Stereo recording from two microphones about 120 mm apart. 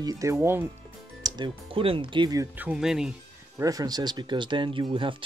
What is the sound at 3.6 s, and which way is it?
Speech, 30° right (ahead or behind).